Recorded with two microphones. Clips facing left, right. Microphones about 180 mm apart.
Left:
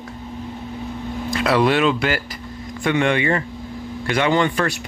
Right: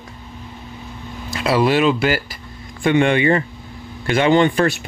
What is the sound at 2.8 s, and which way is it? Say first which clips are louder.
Speech: right 4 dB; 25° right (ahead or behind).